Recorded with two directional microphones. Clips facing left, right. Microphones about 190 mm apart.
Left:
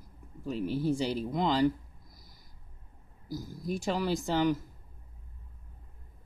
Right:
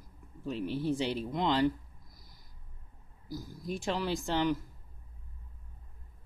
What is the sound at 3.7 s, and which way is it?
Speech, 5° left (ahead or behind).